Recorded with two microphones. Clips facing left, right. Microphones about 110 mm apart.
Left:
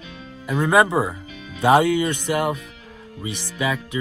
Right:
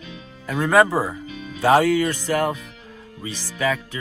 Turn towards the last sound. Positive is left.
turn(degrees=15)  # may be behind; listen again after turning